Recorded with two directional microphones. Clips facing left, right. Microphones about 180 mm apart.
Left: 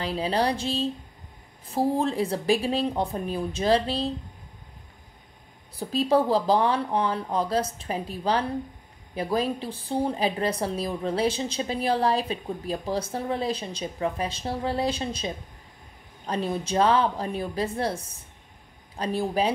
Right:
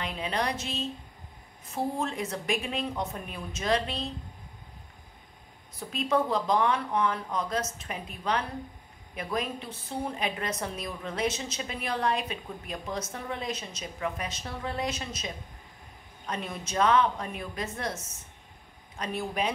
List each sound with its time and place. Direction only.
0.0 s a woman's voice: 35° left (ahead or behind)
5.8 s a woman's voice: 35° left (ahead or behind)